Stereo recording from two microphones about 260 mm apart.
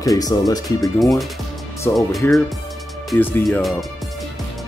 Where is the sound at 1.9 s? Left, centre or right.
Centre.